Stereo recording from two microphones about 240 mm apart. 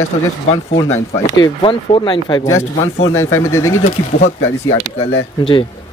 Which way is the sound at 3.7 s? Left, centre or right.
Left.